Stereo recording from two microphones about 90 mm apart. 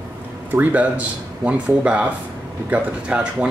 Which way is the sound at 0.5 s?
20° right (ahead or behind).